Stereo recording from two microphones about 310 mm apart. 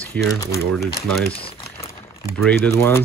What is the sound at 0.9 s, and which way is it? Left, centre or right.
Speech, centre.